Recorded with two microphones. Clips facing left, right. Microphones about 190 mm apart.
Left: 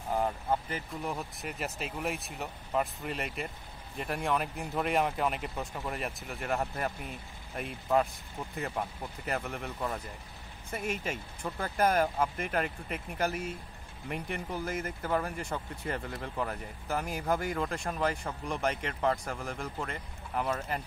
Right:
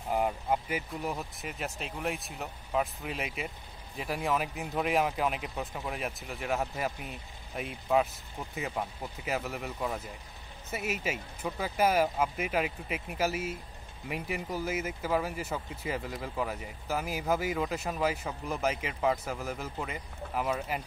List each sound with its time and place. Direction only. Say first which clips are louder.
0.1 s speech: right 1 dB; 10° right (ahead or behind)